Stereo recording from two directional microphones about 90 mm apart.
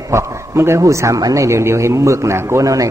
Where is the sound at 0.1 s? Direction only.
30° right (ahead or behind).